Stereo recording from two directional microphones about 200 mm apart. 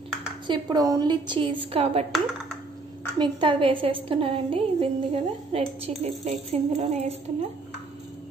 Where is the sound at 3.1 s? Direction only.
25° right (ahead or behind).